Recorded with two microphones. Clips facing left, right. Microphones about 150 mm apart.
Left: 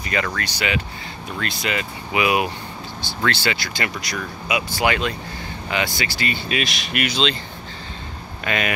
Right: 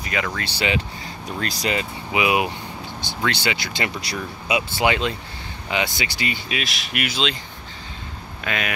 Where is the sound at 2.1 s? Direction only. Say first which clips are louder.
Left 1 dB; 20° right (ahead or behind).